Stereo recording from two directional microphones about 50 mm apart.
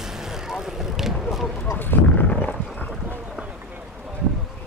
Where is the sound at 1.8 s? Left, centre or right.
Left.